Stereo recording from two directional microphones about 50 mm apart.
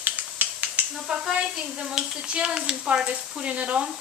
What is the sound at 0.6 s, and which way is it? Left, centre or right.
Speech, right.